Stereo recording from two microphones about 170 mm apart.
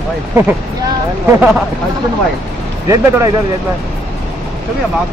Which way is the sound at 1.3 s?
5° right (ahead or behind).